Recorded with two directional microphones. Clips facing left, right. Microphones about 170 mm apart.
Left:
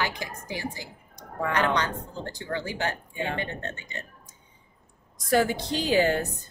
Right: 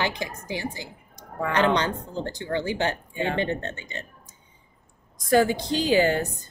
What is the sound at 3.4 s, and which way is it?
Speech, 25° right (ahead or behind).